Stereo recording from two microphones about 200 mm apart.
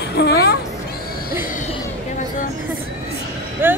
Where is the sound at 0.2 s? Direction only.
55° left (ahead or behind).